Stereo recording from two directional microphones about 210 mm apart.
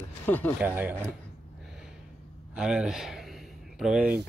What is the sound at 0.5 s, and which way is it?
Speech, 10° right (ahead or behind).